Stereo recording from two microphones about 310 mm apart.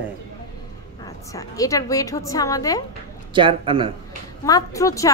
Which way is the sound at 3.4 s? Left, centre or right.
Centre.